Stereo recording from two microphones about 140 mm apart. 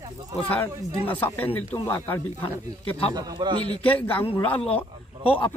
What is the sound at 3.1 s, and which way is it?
Speech, 30° right (ahead or behind).